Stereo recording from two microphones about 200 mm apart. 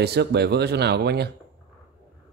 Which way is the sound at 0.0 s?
55° right (ahead or behind).